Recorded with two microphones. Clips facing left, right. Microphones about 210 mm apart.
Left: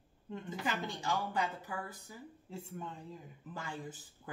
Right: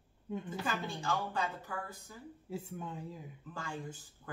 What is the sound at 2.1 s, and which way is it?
Speech, 10° left (ahead or behind).